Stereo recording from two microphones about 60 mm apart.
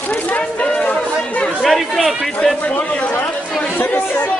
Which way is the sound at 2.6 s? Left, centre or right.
Left.